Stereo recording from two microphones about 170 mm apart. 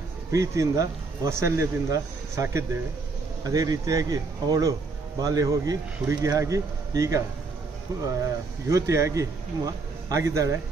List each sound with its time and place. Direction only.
0.3 s a man's voice: 20° right (ahead or behind)